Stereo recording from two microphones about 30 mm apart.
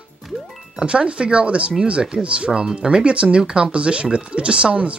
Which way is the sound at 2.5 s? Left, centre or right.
Right.